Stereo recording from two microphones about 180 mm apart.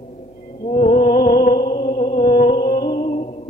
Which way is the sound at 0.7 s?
55° left (ahead or behind).